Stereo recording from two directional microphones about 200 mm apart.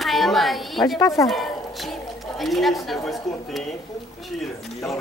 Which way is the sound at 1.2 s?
Centre (ahead or behind).